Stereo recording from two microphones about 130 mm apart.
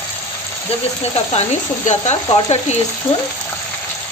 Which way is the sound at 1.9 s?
60° left (ahead or behind).